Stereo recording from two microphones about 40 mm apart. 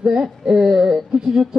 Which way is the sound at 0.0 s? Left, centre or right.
Centre.